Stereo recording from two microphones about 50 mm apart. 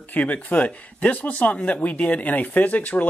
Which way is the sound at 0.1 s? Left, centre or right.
Left.